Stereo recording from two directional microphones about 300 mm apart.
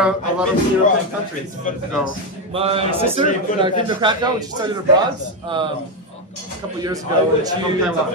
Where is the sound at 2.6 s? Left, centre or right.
Centre.